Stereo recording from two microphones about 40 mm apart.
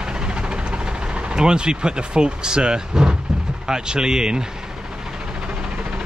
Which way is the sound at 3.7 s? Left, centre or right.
Centre.